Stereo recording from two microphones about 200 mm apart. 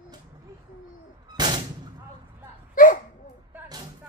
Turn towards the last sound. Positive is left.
turn(degrees=-20)  # may be behind; listen again after turning